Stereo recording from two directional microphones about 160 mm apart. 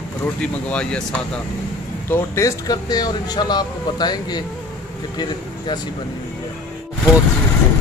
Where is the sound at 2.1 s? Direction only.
20° left (ahead or behind).